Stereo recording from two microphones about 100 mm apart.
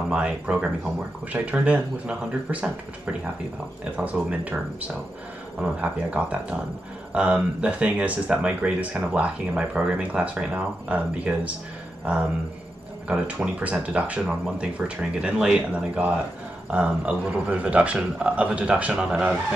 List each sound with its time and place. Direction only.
0.1 s speech: 10° right (ahead or behind)
5.6 s speech: 15° right (ahead or behind)